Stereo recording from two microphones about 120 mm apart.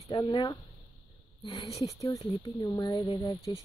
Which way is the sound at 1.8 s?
30° left (ahead or behind).